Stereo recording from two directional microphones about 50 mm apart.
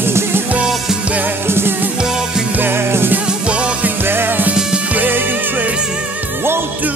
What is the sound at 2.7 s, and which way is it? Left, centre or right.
Music, right.